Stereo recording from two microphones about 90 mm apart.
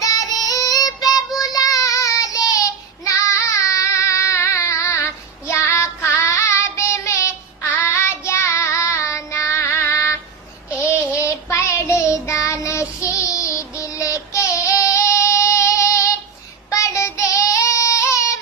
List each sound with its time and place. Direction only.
0.0 s child singing: 40° left (ahead or behind)